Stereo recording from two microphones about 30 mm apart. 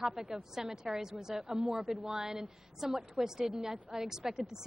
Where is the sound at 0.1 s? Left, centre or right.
Centre.